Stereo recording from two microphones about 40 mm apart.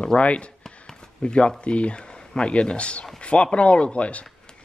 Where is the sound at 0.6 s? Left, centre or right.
Left.